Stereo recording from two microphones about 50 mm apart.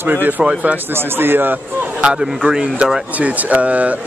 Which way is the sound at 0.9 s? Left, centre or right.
Right.